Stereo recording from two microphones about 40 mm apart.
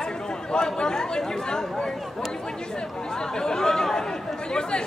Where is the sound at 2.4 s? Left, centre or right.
Centre.